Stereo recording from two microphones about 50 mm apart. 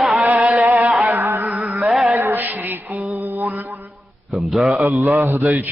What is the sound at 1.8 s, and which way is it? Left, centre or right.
Mantra, centre.